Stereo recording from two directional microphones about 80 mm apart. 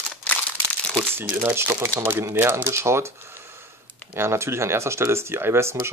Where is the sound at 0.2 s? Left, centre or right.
Centre.